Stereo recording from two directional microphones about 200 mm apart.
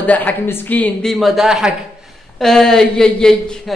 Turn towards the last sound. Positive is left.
turn(degrees=5)  # may be behind; listen again after turning